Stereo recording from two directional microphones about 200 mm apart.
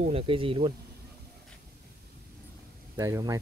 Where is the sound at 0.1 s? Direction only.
25° right (ahead or behind).